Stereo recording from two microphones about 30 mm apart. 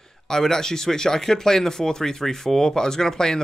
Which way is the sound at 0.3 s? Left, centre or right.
Centre.